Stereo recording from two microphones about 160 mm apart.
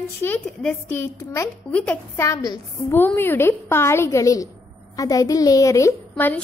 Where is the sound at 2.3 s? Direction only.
20° left (ahead or behind).